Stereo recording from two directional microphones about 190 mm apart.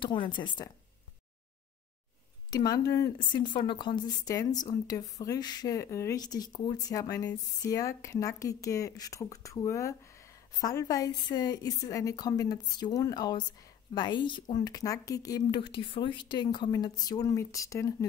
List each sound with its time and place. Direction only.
0.0 s speech: 25° left (ahead or behind)
2.5 s speech: 20° left (ahead or behind)